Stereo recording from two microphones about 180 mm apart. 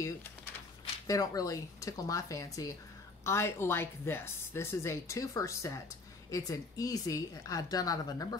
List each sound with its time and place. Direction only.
1.0 s a woman's voice: 20° left (ahead or behind)